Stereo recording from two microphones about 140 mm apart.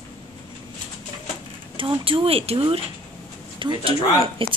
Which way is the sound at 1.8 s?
35° right (ahead or behind).